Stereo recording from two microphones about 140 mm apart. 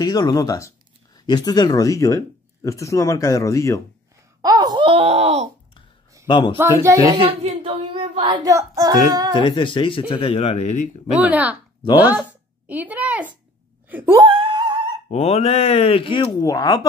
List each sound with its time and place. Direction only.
0.0 s speech: 30° left (ahead or behind)
4.4 s wail: 30° right (ahead or behind); by 5.5 s 50° right (ahead or behind)
6.2 s speech: 35° left (ahead or behind)
6.6 s speech: 20° right (ahead or behind)
7.4 s speech: 45° right (ahead or behind)
8.5 s speech: 25° right (ahead or behind)
9.3 s speech: 40° left (ahead or behind); by 10.9 s 60° left (ahead or behind)
11.1 s a woman's voice: 10° right (ahead or behind)
14.2 s a sound: 35° right (ahead or behind)
15.0 s speech: 50° left (ahead or behind)
16.3 s speech: 25° left (ahead or behind)